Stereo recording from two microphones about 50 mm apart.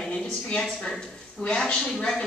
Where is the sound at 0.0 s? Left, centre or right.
Left.